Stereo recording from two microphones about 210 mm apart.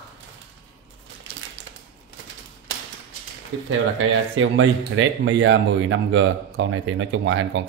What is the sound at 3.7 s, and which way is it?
Speech, 70° right (ahead or behind).